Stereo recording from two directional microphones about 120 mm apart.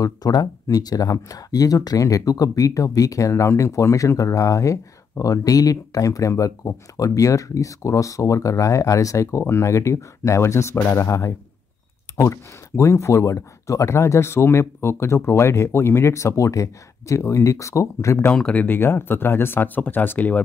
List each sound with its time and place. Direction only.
0.0 s speech: 30° left (ahead or behind)
18.3 s speech: 10° left (ahead or behind)